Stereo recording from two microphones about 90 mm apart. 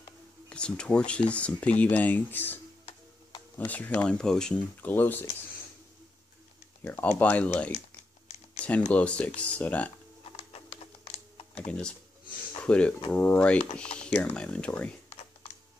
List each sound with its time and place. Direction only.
0.5 s speech: 10° left (ahead or behind)
4.8 s speech: 20° left (ahead or behind)
6.8 s speech: 20° left (ahead or behind)
11.5 s speech: 15° left (ahead or behind)